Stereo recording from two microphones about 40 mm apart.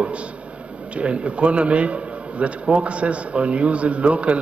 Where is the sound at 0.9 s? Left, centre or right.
Right.